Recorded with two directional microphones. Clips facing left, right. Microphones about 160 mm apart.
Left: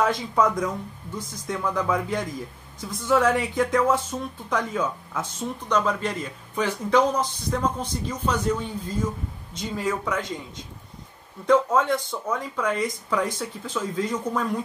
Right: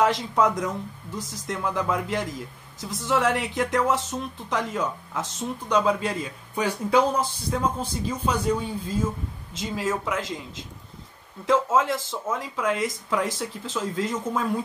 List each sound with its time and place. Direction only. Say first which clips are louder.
0.0 s a man's voice: right 1 dB; centre (ahead or behind)
9.5 s speech: even; 90° right
9.8 s speech: left 1 dB; 5° right (ahead or behind)
11.4 s speech: left 2 dB; 5° right (ahead or behind)